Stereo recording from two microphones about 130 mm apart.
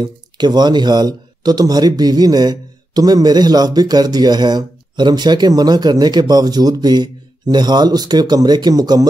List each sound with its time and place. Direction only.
0.0 s speech: 35° right (ahead or behind)